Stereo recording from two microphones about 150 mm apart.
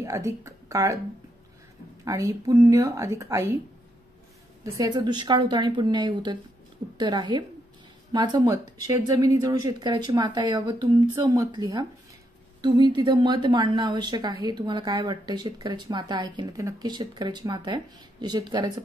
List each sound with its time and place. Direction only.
0.0 s speech: 20° right (ahead or behind)
2.0 s speech: 20° right (ahead or behind)
4.8 s speech: 30° right (ahead or behind)